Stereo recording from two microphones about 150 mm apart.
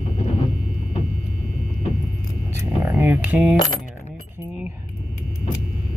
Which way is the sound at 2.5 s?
15° right (ahead or behind).